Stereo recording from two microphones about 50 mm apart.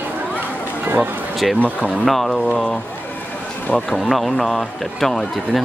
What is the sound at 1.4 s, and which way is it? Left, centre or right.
Speech, centre.